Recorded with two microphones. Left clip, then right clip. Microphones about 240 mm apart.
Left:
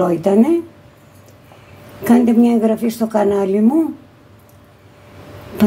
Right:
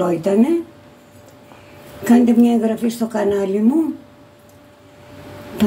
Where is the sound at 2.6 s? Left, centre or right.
Left.